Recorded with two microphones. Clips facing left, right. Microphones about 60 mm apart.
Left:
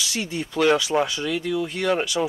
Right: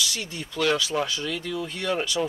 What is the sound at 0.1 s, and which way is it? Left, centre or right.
Speech, left.